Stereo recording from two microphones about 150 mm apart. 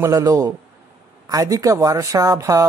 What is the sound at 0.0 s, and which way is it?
Speech, 20° right (ahead or behind).